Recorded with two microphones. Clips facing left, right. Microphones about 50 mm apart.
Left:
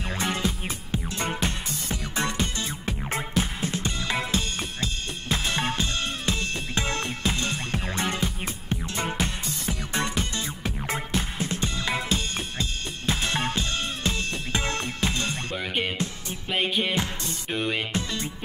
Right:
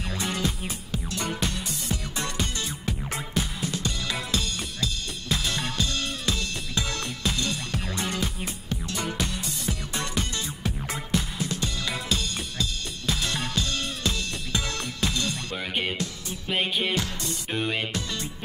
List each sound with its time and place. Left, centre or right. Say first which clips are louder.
0.1 s music: left 2 dB; left
15.5 s music: left 1 dB; centre
16.9 s music: even; left
17.5 s music: left 1 dB; centre